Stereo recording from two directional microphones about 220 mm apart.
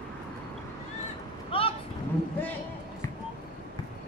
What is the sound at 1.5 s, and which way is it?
Vehicle, 25° left (ahead or behind).